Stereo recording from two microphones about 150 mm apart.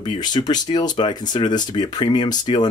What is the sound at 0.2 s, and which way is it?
Speech, 30° left (ahead or behind).